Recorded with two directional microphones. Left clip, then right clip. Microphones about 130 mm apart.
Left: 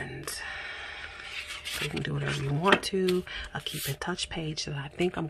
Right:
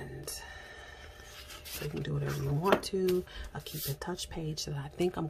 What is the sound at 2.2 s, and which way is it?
Speech, 20° left (ahead or behind).